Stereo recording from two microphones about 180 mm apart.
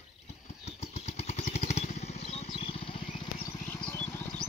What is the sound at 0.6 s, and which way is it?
Vehicle, 35° left (ahead or behind).